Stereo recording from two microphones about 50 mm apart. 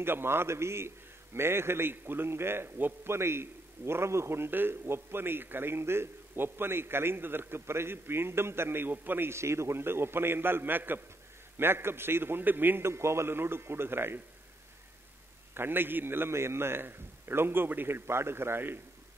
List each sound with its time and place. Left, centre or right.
0.0 s a man's voice: right
9.3 s a man's voice: right
12.8 s a man's voice: right
15.5 s a man's voice: right